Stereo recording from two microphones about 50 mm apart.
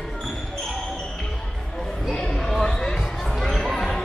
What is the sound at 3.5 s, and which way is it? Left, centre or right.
Music, centre.